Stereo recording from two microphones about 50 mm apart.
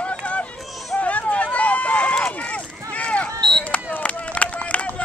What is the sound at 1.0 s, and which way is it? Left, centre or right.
Run, left.